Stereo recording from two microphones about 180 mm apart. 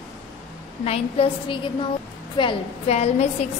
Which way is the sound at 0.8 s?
35° left (ahead or behind).